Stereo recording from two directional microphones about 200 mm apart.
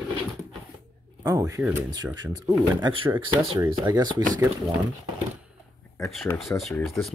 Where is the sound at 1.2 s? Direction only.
15° right (ahead or behind).